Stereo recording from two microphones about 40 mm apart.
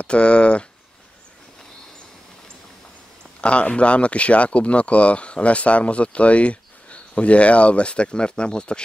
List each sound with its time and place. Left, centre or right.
0.0 s speech: left
3.3 s speech: left